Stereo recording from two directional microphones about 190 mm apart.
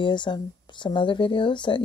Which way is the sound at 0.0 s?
25° left (ahead or behind).